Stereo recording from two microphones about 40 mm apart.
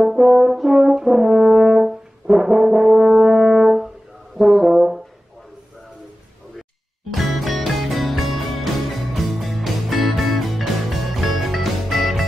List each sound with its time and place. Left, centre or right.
0.0 s french horn: centre
4.4 s brass instrument: centre
7.1 s music: centre